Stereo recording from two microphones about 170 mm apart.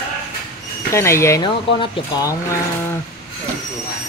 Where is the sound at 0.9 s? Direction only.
15° left (ahead or behind).